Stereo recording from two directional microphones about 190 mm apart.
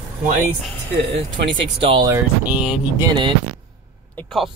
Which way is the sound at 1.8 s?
30° right (ahead or behind).